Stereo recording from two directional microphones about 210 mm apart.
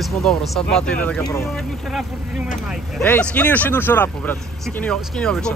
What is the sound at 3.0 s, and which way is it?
Speech, 10° left (ahead or behind).